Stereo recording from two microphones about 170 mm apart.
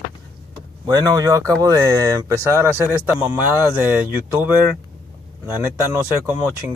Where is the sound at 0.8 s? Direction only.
20° right (ahead or behind).